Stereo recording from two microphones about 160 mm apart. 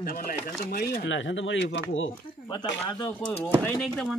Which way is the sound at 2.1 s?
25° left (ahead or behind).